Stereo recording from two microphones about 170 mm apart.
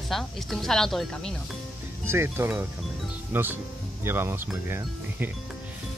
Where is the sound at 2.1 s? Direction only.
15° right (ahead or behind).